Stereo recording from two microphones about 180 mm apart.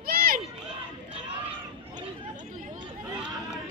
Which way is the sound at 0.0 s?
55° right (ahead or behind).